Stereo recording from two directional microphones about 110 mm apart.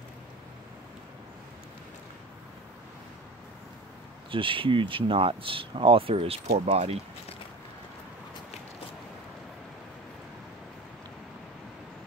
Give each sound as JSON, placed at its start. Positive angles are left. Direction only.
{"t": 4.3, "sound": "speech", "side_deg": -50}